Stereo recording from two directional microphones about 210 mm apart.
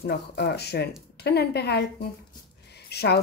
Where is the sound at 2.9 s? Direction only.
50° left (ahead or behind).